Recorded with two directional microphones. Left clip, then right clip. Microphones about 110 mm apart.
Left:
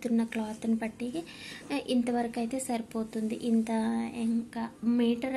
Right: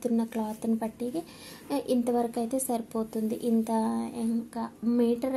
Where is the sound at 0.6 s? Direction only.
30° right (ahead or behind).